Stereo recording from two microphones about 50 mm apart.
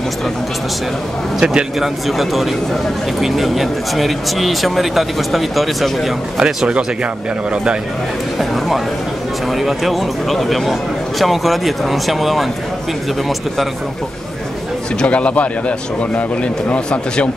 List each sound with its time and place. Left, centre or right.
1.4 s speech: centre
1.8 s speech: centre
6.3 s speech: centre
8.4 s speech: centre
15.0 s a man's voice: left